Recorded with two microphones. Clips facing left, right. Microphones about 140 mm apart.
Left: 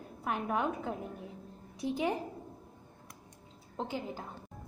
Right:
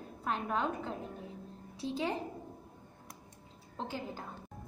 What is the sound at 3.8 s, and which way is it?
Speech, 15° left (ahead or behind).